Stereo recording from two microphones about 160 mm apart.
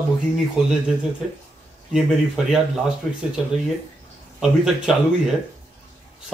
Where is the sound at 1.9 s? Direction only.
5° right (ahead or behind).